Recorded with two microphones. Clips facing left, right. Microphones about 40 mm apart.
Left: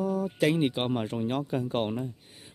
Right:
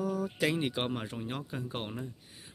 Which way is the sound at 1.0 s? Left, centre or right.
Left.